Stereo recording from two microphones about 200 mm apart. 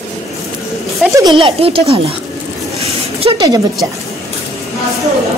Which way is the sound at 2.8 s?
30° right (ahead or behind).